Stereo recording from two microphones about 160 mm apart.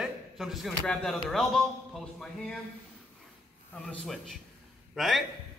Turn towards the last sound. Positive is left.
turn(degrees=0)  # may be behind; listen again after turning